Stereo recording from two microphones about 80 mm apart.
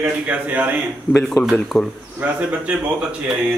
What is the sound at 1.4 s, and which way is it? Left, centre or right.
Speech, left.